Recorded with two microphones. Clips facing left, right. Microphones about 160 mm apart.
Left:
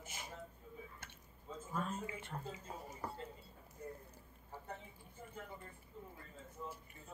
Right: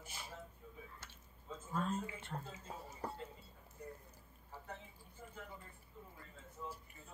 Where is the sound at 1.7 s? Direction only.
15° left (ahead or behind).